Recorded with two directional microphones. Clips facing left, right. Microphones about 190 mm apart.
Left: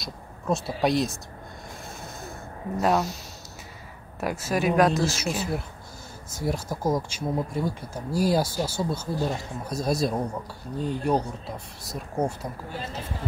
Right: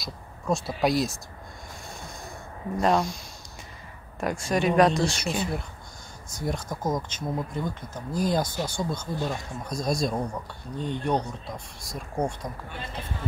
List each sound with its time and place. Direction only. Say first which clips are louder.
0.0 s speech: left 1 dB; centre (ahead or behind)
1.9 s snort: left 1 dB; centre (ahead or behind)
2.8 s speech: even; 5° left (ahead or behind)
4.2 s speech: even; 5° left (ahead or behind)
12.6 s speech: left 3 dB; 30° left (ahead or behind)